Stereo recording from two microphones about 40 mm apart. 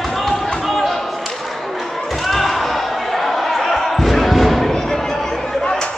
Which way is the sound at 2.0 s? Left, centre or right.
Centre.